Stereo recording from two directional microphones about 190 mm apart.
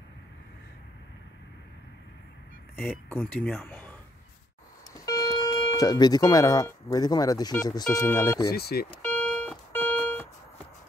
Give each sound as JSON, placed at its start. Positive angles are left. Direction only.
{"t": 2.8, "sound": "speech", "side_deg": 10}
{"t": 4.9, "sound": "speech", "side_deg": 20}
{"t": 8.5, "sound": "speech", "side_deg": 55}
{"t": 9.0, "sound": "alarm clock", "side_deg": 5}